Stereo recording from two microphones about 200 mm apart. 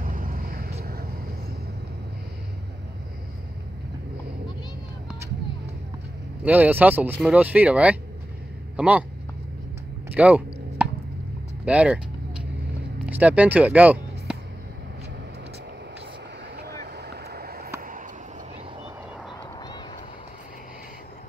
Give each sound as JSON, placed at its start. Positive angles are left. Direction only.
{"t": 0.0, "sound": "vehicle", "side_deg": -45}
{"t": 6.4, "sound": "speech", "side_deg": -10}
{"t": 10.1, "sound": "a sound", "side_deg": -5}
{"t": 11.6, "sound": "speech", "side_deg": -5}
{"t": 13.0, "sound": "speech", "side_deg": -5}
{"t": 16.8, "sound": "vehicle", "side_deg": -55}